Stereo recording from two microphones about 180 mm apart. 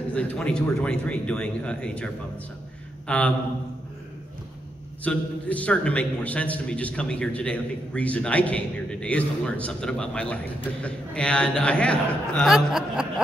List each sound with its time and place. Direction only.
0.1 s speech: 5° left (ahead or behind)
3.1 s a man's voice: 5° left (ahead or behind)
5.0 s a man's voice: 5° left (ahead or behind)